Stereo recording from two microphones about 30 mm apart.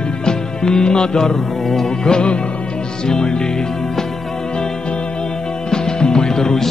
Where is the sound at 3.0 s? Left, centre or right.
Left.